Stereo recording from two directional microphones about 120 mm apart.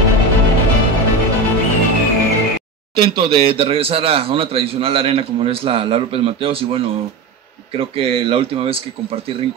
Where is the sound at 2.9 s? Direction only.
45° right (ahead or behind).